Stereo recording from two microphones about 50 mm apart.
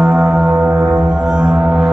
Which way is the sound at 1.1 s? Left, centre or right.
Centre.